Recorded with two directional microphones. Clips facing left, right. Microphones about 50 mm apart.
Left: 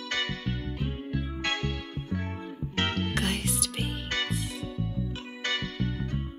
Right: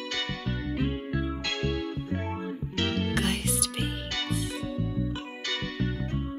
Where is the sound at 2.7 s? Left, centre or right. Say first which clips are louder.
Even; left.